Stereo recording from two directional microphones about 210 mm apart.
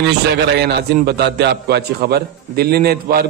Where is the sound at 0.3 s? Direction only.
50° right (ahead or behind).